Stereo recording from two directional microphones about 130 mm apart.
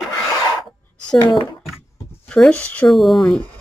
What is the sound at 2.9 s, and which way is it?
Speech, centre (ahead or behind).